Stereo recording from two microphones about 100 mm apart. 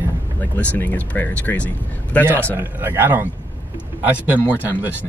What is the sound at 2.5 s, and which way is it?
Speech, 20° right (ahead or behind).